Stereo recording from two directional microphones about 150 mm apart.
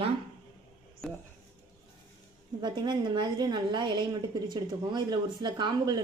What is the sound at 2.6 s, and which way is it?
A woman's voice, 30° right (ahead or behind).